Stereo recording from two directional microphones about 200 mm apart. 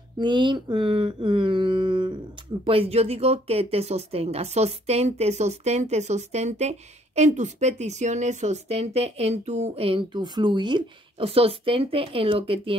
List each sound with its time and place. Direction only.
0.2 s speech: 25° right (ahead or behind)